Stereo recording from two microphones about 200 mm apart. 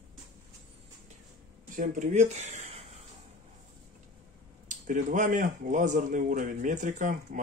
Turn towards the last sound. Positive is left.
turn(degrees=-40)  # may be behind; listen again after turning